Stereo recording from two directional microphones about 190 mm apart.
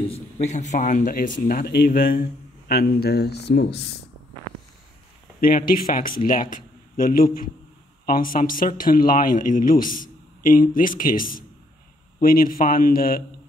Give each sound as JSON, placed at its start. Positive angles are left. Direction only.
{"t": 0.1, "sound": "speech", "side_deg": 35}
{"t": 5.4, "sound": "a man's voice", "side_deg": 50}